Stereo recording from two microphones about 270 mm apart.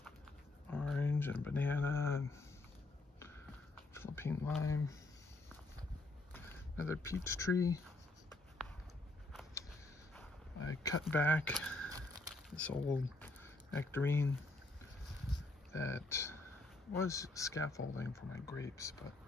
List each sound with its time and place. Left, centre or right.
0.7 s speech: centre
3.9 s speech: centre
4.6 s speech: left
6.3 s speech: centre
10.8 s speech: centre
15.7 s speech: centre